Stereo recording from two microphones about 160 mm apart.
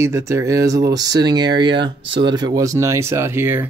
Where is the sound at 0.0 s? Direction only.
15° right (ahead or behind).